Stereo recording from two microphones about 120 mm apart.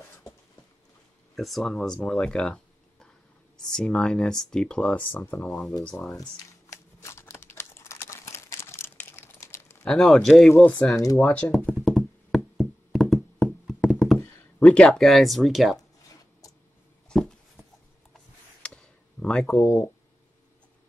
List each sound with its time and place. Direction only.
1.3 s speech: centre (ahead or behind); by 5.5 s 15° left (ahead or behind)
5.5 s speech: centre (ahead or behind)
6.7 s crumpling: 25° left (ahead or behind)
9.8 s speech: 5° left (ahead or behind)
11.7 s a sound: 5° left (ahead or behind)
14.6 s speech: 10° left (ahead or behind)
17.1 s a sound: 5° left (ahead or behind)
19.4 s speech: 20° left (ahead or behind)